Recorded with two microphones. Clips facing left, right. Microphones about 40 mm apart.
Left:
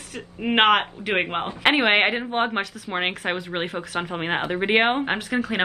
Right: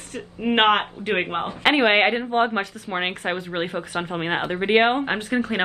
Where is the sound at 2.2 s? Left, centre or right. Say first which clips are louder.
Right 2 dB; left.